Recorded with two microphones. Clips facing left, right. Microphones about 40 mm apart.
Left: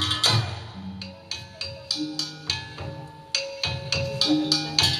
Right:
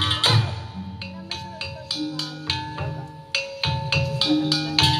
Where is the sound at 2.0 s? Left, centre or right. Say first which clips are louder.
Right 3 dB; right.